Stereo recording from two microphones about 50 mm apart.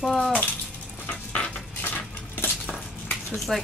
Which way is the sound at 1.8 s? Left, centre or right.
Left.